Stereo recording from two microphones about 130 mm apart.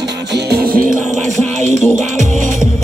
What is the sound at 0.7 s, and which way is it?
Music, 90° right.